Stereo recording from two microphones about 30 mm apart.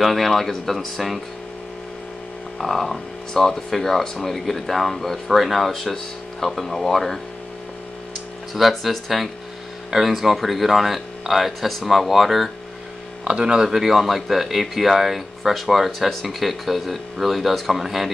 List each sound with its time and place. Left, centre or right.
0.0 s speech: centre
2.6 s speech: centre
8.5 s speech: centre
13.2 s speech: right
13.7 s speech: centre